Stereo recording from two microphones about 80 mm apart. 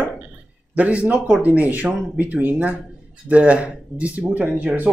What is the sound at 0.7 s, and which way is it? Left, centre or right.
Speech, centre.